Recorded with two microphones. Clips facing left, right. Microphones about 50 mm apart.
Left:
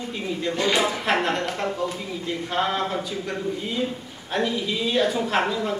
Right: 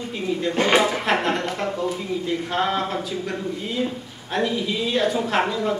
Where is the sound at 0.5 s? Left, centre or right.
Right.